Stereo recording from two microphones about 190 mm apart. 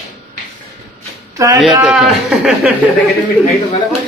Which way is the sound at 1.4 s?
15° right (ahead or behind).